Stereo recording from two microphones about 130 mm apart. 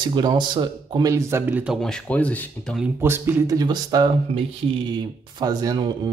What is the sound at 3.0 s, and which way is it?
Speech, 15° right (ahead or behind).